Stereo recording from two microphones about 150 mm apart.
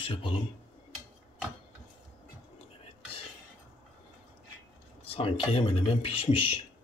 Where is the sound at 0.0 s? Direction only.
35° left (ahead or behind).